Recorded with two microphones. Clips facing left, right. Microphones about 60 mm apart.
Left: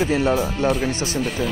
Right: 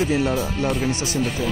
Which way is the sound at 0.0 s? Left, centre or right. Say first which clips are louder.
Left 2 dB; left.